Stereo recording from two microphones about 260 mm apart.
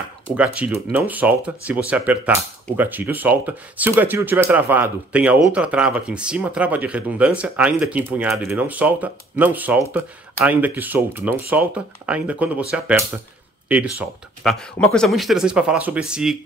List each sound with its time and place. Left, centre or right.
0.4 s speech: centre